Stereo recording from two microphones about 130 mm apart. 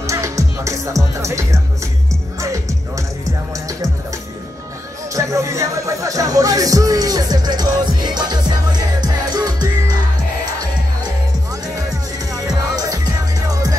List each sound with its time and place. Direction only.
0.0 s music: 25° right (ahead or behind)
5.1 s music: 25° right (ahead or behind)